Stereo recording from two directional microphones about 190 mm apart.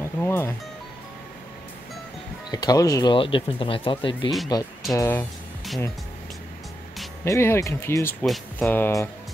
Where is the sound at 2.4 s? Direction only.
20° left (ahead or behind).